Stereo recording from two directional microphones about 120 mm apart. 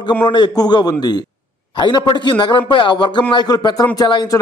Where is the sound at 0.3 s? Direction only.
35° left (ahead or behind).